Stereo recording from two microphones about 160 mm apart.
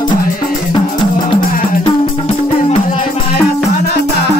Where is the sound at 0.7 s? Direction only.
30° left (ahead or behind).